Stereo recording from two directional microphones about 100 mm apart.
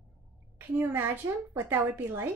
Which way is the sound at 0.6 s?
20° right (ahead or behind).